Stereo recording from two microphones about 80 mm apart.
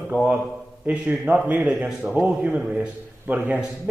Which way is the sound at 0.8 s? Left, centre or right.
Centre.